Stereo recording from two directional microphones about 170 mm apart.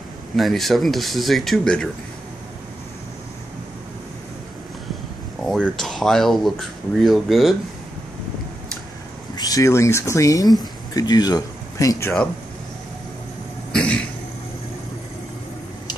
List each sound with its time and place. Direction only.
0.4 s speech: centre (ahead or behind)
5.5 s speech: centre (ahead or behind)
9.4 s speech: 20° left (ahead or behind)
13.7 s cough: 5° left (ahead or behind)